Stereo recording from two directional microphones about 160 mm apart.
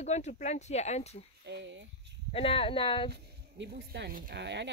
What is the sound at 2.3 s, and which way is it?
Speech, 35° left (ahead or behind).